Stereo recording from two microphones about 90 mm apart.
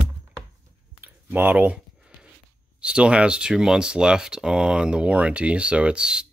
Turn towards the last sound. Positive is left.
turn(degrees=-10)  # may be behind; listen again after turning